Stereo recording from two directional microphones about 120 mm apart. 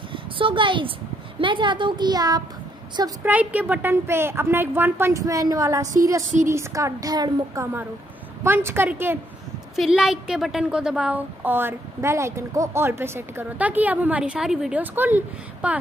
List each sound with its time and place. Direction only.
0.1 s a sound: 45° right (ahead or behind)
1.4 s a woman's voice: 45° right (ahead or behind)
3.3 s a woman's voice: 10° right (ahead or behind); by 7.6 s 35° right (ahead or behind)
8.5 s a woman's voice: 20° right (ahead or behind)
9.8 s a woman's voice: 5° right (ahead or behind)
14.8 s a woman's voice: 15° right (ahead or behind)